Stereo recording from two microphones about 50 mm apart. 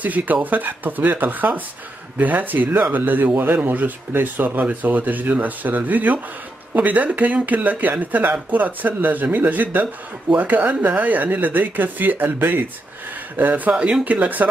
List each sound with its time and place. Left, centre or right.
0.0 s speech: right
13.7 s speech: right
14.0 s speech: right